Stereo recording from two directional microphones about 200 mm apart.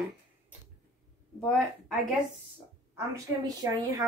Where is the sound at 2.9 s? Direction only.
15° right (ahead or behind).